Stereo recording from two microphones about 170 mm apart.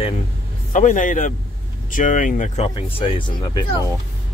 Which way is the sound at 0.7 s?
50° left (ahead or behind).